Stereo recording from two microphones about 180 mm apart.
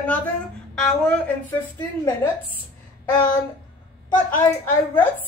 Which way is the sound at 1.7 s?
15° left (ahead or behind).